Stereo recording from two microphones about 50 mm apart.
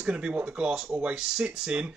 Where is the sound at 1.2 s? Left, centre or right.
Centre.